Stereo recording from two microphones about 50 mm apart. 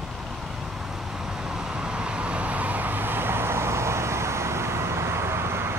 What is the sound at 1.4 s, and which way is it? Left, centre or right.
Vehicle, centre.